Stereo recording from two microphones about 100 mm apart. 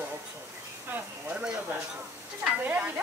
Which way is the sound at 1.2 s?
15° right (ahead or behind).